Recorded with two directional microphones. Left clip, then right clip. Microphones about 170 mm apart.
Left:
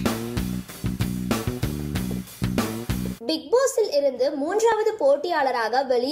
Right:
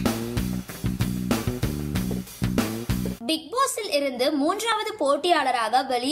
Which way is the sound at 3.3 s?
25° right (ahead or behind).